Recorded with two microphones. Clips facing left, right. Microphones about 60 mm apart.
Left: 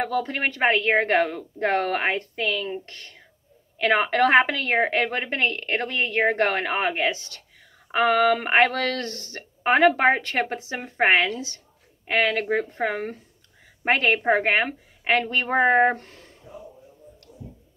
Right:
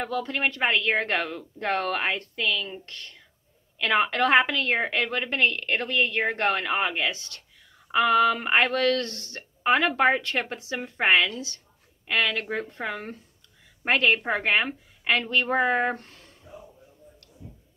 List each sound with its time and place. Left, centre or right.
0.0 s a woman's voice: left
7.1 s speech: left
7.9 s a woman's voice: left